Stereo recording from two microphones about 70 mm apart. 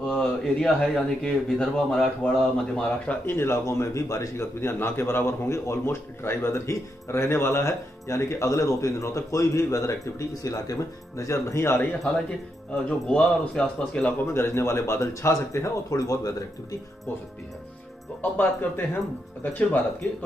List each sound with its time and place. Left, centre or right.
0.0 s a man's voice: centre
3.3 s a man's voice: left
13.1 s a man's voice: centre
14.2 s a man's voice: left
19.4 s a man's voice: left